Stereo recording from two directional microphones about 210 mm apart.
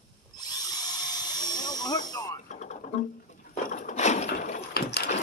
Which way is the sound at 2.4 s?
35° left (ahead or behind).